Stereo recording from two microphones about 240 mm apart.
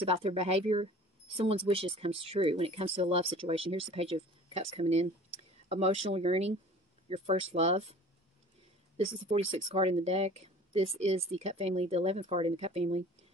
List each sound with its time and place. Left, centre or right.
0.0 s speech: right